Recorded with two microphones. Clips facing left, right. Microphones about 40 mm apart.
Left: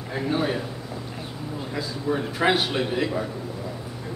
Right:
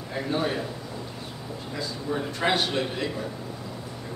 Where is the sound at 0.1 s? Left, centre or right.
Centre.